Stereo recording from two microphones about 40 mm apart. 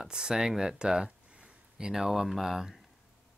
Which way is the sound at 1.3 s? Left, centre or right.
Right.